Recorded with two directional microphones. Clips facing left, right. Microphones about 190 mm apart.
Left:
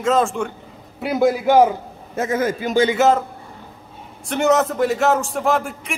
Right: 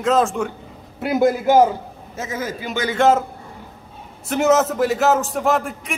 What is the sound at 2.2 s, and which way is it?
Speech, 55° left (ahead or behind).